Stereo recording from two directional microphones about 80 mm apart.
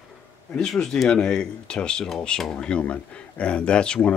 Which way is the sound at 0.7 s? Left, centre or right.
Centre.